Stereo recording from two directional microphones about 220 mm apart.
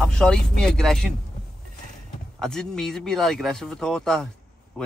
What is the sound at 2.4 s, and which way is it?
Speech, centre (ahead or behind).